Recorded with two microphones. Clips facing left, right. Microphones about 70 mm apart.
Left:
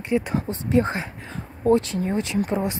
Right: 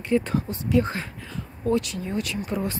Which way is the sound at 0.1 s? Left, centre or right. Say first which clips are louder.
Even; centre.